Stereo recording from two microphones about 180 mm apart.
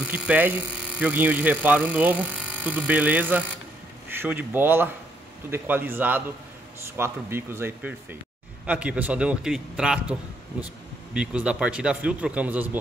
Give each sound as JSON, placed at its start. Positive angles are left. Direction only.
{"t": 0.1, "sound": "speech", "side_deg": -10}
{"t": 11.1, "sound": "speech", "side_deg": -5}